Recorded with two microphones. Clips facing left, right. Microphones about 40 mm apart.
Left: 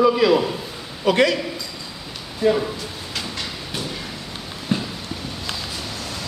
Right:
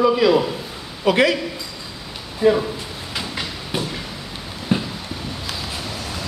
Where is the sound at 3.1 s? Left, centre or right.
Centre.